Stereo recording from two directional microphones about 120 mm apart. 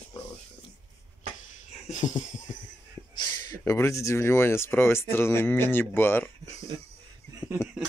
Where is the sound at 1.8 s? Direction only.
90° left.